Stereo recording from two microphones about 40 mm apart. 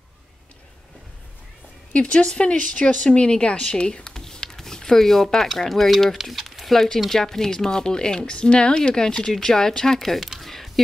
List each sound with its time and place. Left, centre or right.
2.0 s speech: left
4.1 s a sound: centre
6.1 s speech: centre